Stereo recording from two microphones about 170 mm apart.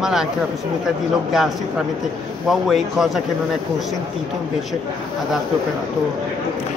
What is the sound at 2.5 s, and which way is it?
Speech, centre (ahead or behind).